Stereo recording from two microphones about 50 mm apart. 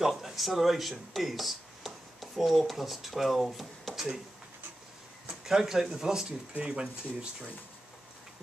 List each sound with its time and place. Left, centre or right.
0.2 s speech: centre
5.3 s speech: centre